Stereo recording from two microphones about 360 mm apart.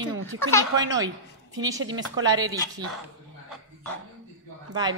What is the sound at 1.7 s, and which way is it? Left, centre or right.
Speech, right.